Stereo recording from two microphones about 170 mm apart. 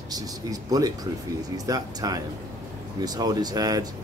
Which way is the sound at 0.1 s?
20° right (ahead or behind).